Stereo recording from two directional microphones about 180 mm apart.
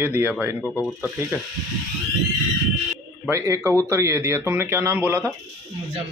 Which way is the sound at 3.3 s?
15° right (ahead or behind).